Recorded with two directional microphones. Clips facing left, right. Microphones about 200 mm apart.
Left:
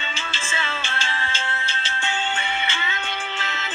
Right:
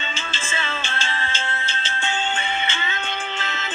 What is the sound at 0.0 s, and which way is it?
Music, 30° right (ahead or behind).